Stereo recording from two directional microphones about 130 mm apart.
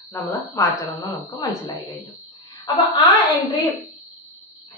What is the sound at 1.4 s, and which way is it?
Speech, 25° left (ahead or behind).